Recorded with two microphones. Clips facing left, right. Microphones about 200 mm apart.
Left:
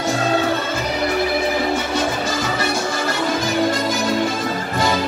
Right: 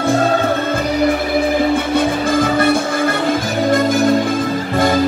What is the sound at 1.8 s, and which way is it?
Music, 55° right (ahead or behind).